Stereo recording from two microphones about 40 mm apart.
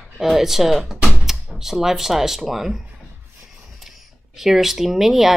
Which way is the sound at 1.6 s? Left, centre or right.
Centre.